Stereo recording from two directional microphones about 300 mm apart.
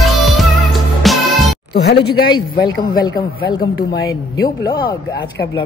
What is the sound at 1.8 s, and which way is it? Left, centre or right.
Speech, left.